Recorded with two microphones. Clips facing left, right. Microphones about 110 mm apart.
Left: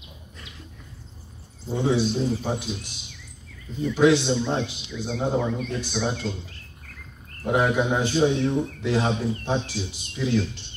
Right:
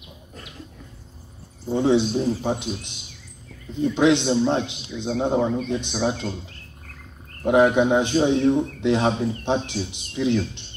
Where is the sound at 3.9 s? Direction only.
20° right (ahead or behind).